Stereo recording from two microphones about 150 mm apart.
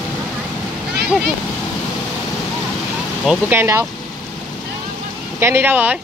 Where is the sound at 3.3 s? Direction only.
15° right (ahead or behind).